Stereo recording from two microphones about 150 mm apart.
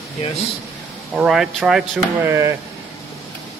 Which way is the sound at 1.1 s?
5° right (ahead or behind).